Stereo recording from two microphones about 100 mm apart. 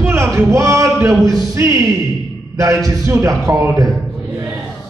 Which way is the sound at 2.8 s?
30° right (ahead or behind).